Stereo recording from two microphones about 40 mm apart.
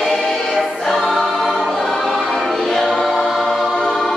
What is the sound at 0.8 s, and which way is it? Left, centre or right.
Choir, centre.